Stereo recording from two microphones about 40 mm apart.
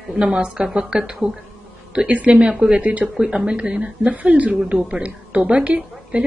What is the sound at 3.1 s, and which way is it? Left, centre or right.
Speech, right.